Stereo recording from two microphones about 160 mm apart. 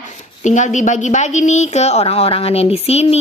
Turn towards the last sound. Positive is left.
turn(degrees=40)  # may be behind; listen again after turning